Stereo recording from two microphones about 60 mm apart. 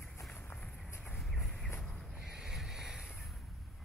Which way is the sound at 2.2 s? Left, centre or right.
Centre.